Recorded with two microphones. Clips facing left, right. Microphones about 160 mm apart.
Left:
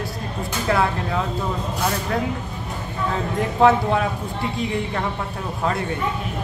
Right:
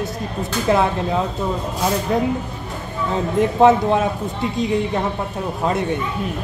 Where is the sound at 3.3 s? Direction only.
20° right (ahead or behind).